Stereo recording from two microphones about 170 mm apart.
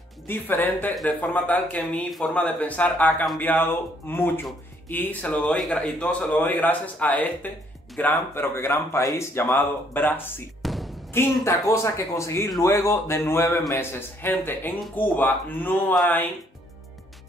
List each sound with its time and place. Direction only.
0.3 s a man's voice: 10° left (ahead or behind)
10.6 s music: centre (ahead or behind)
11.1 s a man's voice: 15° left (ahead or behind)